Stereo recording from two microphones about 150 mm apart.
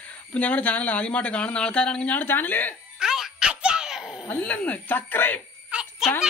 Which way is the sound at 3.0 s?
5° right (ahead or behind).